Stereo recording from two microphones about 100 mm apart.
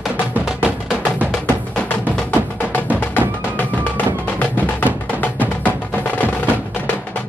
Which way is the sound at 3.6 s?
15° left (ahead or behind).